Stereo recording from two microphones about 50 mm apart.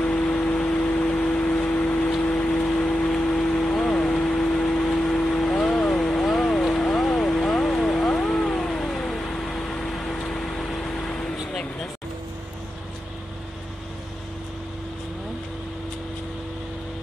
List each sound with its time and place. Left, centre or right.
0.0 s vehicle: left